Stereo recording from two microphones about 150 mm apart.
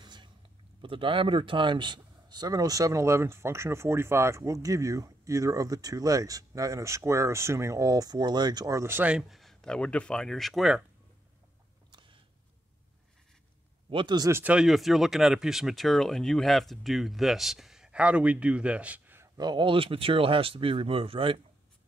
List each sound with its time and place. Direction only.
0.0 s a sound: 30° right (ahead or behind)
0.8 s a man's voice: 35° right (ahead or behind); by 10.8 s centre (ahead or behind)
11.9 s a sound: 35° right (ahead or behind)
13.8 s speech: 30° right (ahead or behind)
14.3 s speech: 10° right (ahead or behind)
19.3 s speech: 30° right (ahead or behind)